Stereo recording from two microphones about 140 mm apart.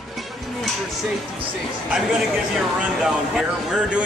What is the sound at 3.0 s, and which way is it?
Speech, 5° right (ahead or behind).